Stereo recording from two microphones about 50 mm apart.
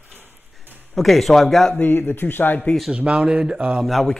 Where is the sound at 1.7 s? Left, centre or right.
Left.